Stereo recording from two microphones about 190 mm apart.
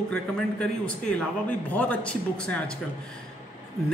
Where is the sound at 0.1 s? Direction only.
5° left (ahead or behind).